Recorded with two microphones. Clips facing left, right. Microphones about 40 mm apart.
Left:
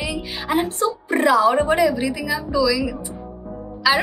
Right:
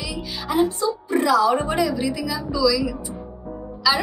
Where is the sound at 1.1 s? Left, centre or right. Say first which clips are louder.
Left 2 dB; left.